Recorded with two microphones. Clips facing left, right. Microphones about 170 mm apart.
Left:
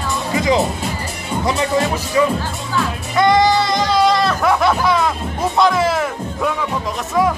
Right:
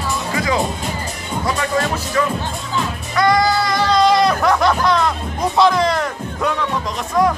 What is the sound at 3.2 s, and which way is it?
Music, 20° left (ahead or behind).